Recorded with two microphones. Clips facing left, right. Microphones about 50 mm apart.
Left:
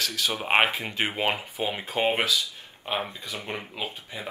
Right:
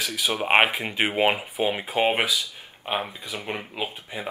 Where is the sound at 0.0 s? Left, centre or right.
Centre.